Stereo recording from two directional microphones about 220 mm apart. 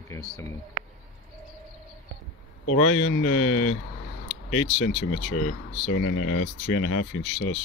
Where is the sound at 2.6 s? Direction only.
85° left; by 7.5 s 70° left (ahead or behind).